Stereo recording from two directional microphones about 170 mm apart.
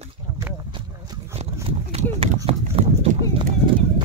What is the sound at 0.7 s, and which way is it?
Speech, 35° right (ahead or behind).